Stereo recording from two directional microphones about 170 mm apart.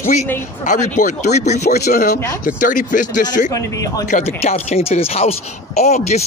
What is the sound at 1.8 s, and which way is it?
A man's voice, 60° left (ahead or behind).